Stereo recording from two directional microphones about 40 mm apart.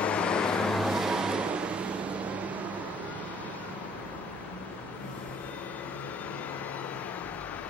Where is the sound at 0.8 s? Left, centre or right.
Centre.